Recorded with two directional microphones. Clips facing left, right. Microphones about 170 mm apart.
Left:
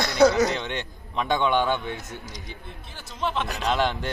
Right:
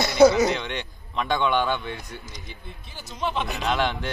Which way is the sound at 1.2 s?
15° left (ahead or behind).